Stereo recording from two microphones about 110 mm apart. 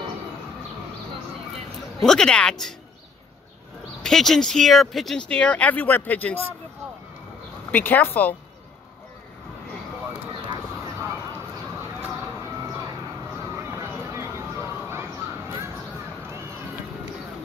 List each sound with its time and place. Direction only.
2.0 s speech: 5° left (ahead or behind)
4.0 s speech: 5° left (ahead or behind)
7.7 s speech: 15° left (ahead or behind)
13.7 s a sound: 20° right (ahead or behind)